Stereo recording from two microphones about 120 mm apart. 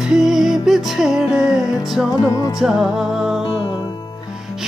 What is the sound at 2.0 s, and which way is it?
Music, 30° left (ahead or behind).